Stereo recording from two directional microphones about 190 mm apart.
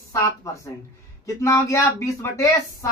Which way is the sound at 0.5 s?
15° left (ahead or behind).